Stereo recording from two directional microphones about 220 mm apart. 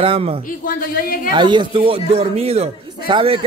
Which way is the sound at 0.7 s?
40° left (ahead or behind).